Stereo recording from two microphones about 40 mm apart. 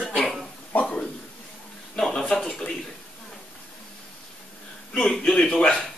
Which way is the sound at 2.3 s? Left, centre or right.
Centre.